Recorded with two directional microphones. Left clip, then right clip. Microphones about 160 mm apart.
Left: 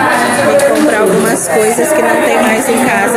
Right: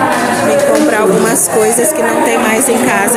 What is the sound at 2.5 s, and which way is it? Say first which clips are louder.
Speech: even; 10° right (ahead or behind).